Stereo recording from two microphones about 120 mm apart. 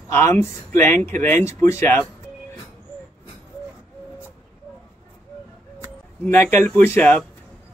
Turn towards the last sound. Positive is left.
turn(degrees=15)  # may be behind; listen again after turning